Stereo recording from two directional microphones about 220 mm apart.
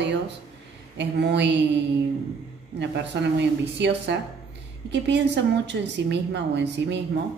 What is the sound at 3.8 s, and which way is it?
Speech, 50° right (ahead or behind).